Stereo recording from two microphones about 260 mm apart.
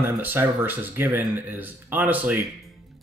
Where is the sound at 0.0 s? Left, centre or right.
Centre.